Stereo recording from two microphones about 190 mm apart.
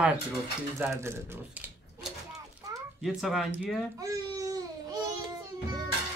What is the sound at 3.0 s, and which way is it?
Speech, centre (ahead or behind).